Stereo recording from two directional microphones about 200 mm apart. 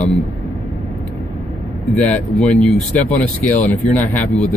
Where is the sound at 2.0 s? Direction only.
5° left (ahead or behind).